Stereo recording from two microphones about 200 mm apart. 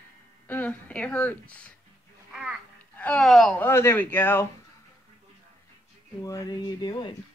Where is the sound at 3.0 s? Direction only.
5° left (ahead or behind).